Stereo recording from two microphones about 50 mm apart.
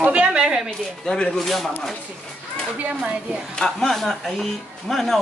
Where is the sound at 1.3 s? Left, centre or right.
Centre.